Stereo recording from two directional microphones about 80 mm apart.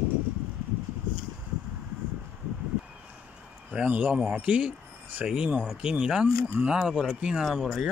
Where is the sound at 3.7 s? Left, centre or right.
Centre.